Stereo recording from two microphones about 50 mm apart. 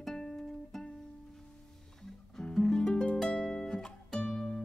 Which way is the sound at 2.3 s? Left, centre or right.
Centre.